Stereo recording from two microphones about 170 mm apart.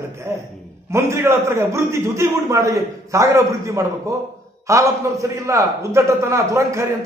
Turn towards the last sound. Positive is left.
turn(degrees=-15)  # may be behind; listen again after turning